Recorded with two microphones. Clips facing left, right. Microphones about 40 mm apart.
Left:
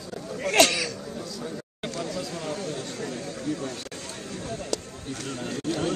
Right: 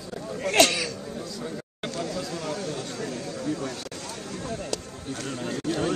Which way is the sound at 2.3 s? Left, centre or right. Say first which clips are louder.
Right 1 dB; left.